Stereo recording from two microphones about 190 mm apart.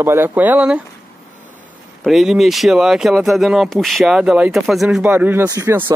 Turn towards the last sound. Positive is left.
turn(degrees=-15)  # may be behind; listen again after turning